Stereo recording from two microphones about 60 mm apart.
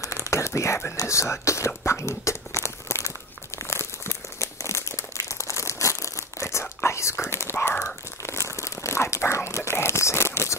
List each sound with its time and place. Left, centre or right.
0.0 s a sound: left
0.9 s speech: left
1.9 s a sound: left
3.5 s crumpling: left
6.6 s whispering: left
9.6 s crumpling: left